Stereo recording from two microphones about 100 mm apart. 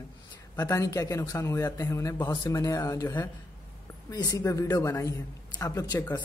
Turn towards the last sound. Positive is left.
turn(degrees=40)  # may be behind; listen again after turning